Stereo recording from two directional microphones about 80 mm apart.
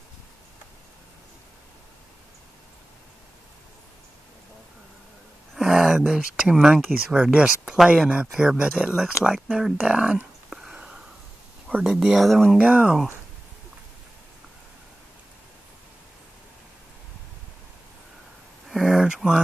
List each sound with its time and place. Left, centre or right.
5.5 s speech: centre
10.5 s a sound: centre
11.7 s speech: centre
12.2 s speech: centre
12.5 s speech: centre
18.7 s a sound: centre